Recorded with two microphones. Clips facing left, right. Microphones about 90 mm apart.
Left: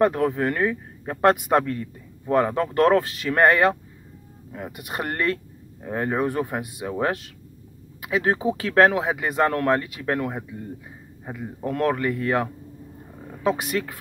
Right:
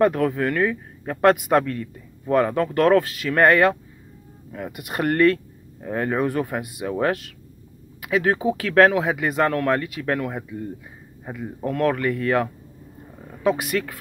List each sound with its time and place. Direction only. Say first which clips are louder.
0.0 s speech: right 1 dB; 25° left (ahead or behind)